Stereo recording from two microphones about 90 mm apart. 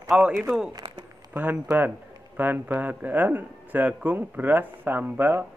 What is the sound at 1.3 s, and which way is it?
Speech, 20° right (ahead or behind).